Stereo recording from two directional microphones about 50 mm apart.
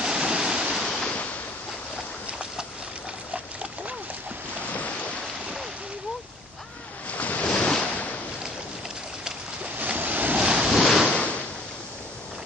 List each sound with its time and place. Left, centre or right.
0.0 s waterfall: centre
0.8 s waves: centre
7.1 s waves: left
7.4 s waves: left
7.8 s a sound: left
9.8 s waves: right
10.4 s waves: centre
10.7 s waves: centre
11.1 s a sound: left